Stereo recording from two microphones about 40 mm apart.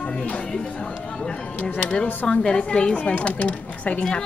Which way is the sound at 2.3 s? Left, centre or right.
Left.